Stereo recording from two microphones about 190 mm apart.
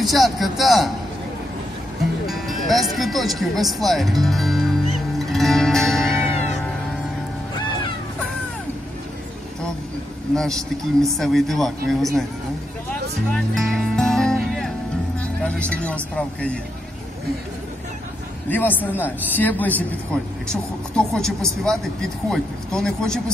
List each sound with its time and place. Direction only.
0.0 s a man's voice: centre (ahead or behind)
2.2 s speech: centre (ahead or behind)
5.2 s music: centre (ahead or behind)
10.3 s a man's voice: centre (ahead or behind)
13.3 s music: centre (ahead or behind)
15.4 s speech: 5° left (ahead or behind)
18.5 s speech: 10° left (ahead or behind)
20.9 s a man's voice: 5° left (ahead or behind)